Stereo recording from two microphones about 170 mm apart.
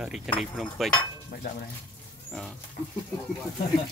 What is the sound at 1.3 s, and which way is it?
Stir, 60° left (ahead or behind).